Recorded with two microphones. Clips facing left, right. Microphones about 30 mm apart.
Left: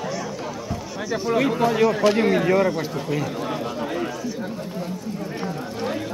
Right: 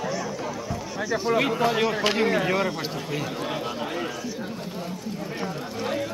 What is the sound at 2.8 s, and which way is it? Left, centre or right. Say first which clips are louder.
Speech: left 4 dB; right.